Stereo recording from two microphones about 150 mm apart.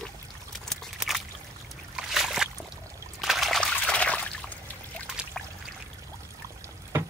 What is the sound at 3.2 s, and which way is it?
Trickle, centre (ahead or behind).